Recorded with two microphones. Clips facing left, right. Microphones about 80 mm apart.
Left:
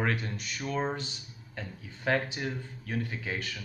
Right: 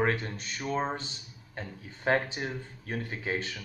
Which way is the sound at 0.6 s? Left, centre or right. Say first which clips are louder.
Right 1 dB; right.